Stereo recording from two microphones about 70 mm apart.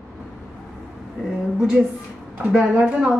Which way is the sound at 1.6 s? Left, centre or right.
Centre.